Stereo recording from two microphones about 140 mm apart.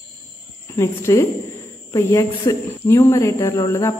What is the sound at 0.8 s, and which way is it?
Speech, 20° left (ahead or behind).